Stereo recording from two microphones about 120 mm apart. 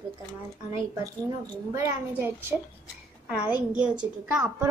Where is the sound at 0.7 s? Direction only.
30° right (ahead or behind).